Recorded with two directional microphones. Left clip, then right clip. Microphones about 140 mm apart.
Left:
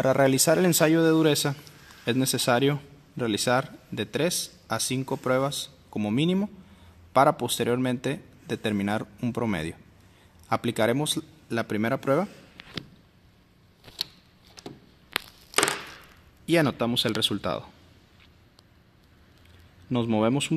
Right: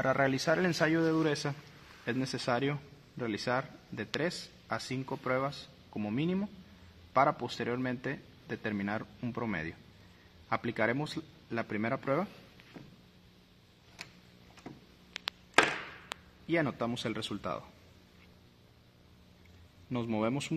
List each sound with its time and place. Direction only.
0.0 s a man's voice: 90° left; by 12.3 s 60° left (ahead or behind)
16.4 s a man's voice: 70° left (ahead or behind)
19.9 s a man's voice: 55° left (ahead or behind)